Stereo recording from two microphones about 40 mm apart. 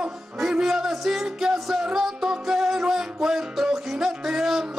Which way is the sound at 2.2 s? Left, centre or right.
Right.